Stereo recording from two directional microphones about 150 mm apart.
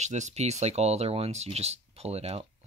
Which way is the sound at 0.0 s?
50° right (ahead or behind).